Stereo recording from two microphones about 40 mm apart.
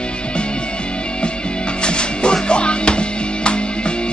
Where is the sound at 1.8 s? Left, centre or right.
Left.